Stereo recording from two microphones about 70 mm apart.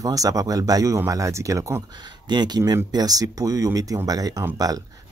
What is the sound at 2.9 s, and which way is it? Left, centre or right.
Speech, right.